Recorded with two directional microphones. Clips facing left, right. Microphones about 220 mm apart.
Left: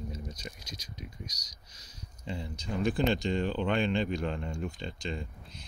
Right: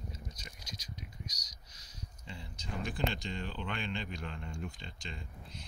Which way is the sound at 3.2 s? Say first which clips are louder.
Left 11 dB; 90° left.